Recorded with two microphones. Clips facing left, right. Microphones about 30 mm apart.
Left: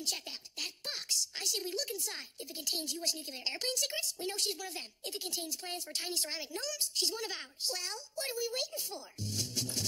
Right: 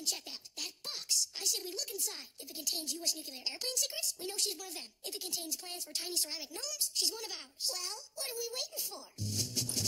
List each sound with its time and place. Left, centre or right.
0.0 s a woman's voice: left
9.4 s music: centre